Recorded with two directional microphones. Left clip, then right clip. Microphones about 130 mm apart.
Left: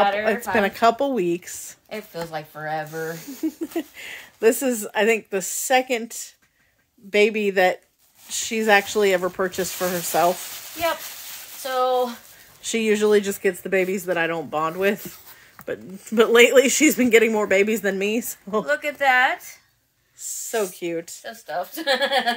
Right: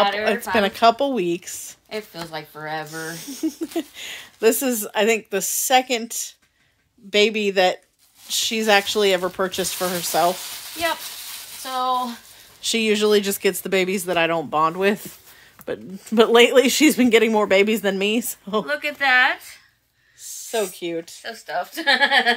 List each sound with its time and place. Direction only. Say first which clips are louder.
0.2 s speech: right 1 dB; 5° right (ahead or behind)
1.9 s a woman's voice: even; 40° left (ahead or behind)
3.2 s speech: right 1 dB; 5° right (ahead or behind)
11.6 s a woman's voice: left 1 dB; 65° left (ahead or behind)
12.6 s speech: right 1 dB; 5° right (ahead or behind)
13.4 s speech: right 1 dB; 30° right (ahead or behind)
16.2 s speech: even; 35° right (ahead or behind)
17.7 s speech: right 1 dB; 15° right (ahead or behind)
18.7 s speech: even; 55° left (ahead or behind)
20.2 s speech: even; centre (ahead or behind)
21.2 s a woman's voice: right 2 dB; 60° left (ahead or behind)